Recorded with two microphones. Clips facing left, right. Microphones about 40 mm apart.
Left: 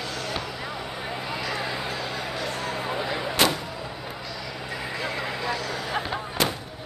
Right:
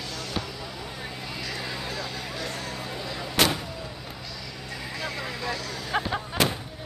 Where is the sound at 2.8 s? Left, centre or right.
Left.